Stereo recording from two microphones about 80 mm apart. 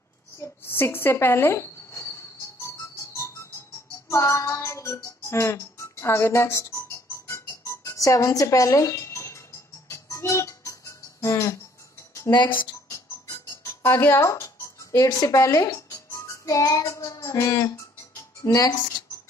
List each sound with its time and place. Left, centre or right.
0.4 s a woman's voice: left
1.1 s cricket: left
4.1 s music: left
12.3 s speech: left
12.9 s music: left
13.9 s a child's voice: left
17.0 s music: left
17.5 s speech: left